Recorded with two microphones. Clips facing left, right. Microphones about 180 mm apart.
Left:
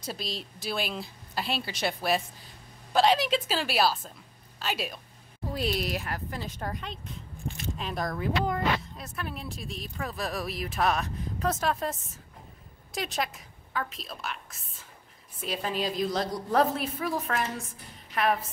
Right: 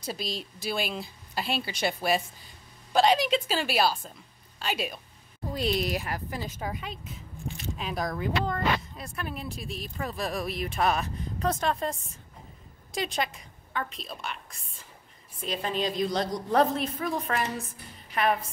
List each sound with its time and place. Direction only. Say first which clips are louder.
0.0 s a woman's voice: right 2 dB; centre (ahead or behind)